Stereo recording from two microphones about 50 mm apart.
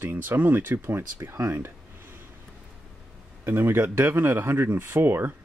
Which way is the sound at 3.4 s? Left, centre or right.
Right.